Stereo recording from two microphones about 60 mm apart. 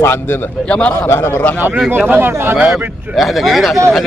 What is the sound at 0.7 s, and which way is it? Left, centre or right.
Speech, left.